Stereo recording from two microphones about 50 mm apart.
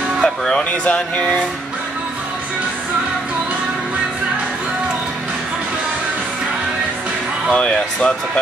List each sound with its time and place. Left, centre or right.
0.2 s music: centre
0.8 s speech: left
7.5 s speech: left